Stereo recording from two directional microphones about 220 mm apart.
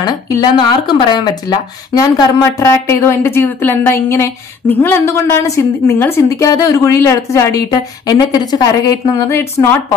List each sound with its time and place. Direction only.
0.0 s a woman's voice: 20° left (ahead or behind)